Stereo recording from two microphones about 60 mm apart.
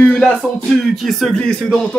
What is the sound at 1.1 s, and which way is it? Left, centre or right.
Speech, centre.